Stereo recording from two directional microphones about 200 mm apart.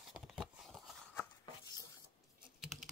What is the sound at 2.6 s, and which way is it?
Computer keyboard, centre (ahead or behind).